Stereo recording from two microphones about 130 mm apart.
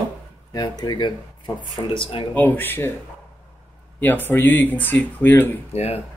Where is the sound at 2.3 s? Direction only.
15° left (ahead or behind).